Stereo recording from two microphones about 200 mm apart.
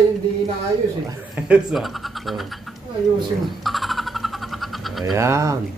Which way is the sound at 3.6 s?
Centre (ahead or behind).